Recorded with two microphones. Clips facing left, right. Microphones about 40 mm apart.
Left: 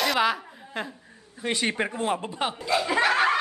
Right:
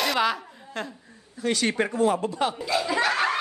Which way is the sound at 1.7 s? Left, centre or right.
Centre.